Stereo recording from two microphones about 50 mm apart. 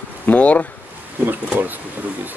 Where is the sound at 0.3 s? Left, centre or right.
Left.